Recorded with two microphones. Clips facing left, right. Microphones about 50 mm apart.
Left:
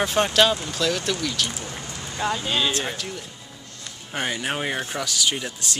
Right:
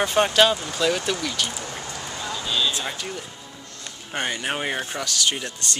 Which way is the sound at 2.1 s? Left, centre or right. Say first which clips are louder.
Left 3 dB; left.